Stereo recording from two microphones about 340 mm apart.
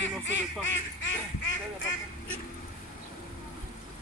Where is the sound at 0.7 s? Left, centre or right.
Left.